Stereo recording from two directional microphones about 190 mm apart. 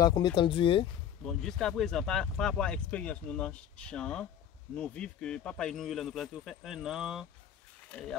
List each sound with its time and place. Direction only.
0.0 s speech: 20° left (ahead or behind)
1.2 s speech: centre (ahead or behind)